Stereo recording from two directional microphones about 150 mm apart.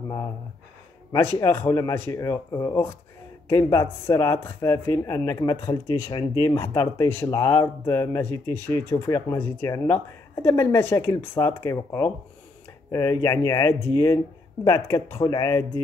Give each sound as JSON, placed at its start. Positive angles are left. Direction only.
{"t": 1.2, "sound": "speech", "side_deg": 15}